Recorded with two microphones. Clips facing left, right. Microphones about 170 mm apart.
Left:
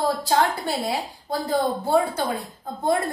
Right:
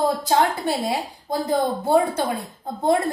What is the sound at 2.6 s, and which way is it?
Speech, 20° right (ahead or behind).